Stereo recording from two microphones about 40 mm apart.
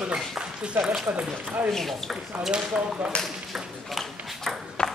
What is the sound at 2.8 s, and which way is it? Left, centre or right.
Speech, right.